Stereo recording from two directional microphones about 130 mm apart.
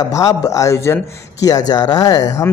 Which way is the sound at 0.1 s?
25° left (ahead or behind).